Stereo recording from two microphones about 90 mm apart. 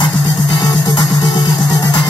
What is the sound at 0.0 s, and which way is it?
Music, 55° left (ahead or behind).